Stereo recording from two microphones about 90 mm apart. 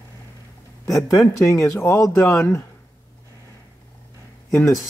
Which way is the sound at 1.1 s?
35° left (ahead or behind).